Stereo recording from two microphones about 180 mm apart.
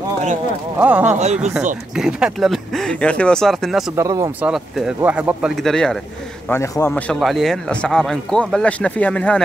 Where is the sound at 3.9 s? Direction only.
20° right (ahead or behind).